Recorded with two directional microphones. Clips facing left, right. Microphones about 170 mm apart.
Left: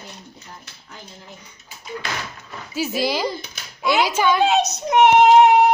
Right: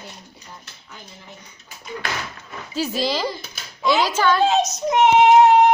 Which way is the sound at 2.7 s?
10° left (ahead or behind).